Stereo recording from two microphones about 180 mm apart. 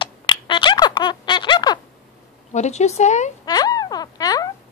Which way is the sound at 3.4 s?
20° left (ahead or behind).